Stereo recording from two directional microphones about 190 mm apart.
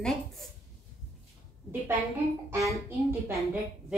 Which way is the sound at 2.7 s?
10° right (ahead or behind).